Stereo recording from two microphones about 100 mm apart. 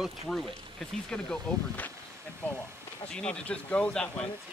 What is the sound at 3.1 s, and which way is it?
Speech, 10° left (ahead or behind).